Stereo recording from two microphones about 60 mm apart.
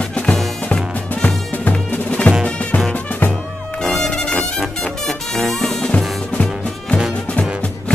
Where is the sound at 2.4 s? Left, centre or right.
Left.